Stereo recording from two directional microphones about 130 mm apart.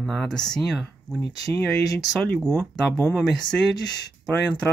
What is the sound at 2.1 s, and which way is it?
Speech, centre (ahead or behind).